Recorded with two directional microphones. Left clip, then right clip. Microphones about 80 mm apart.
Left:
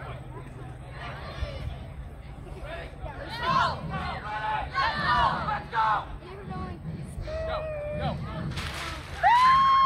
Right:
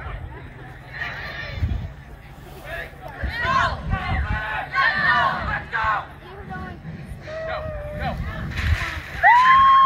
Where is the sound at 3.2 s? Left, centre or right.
Left.